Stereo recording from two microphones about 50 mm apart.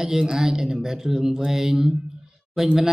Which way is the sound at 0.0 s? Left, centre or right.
Centre.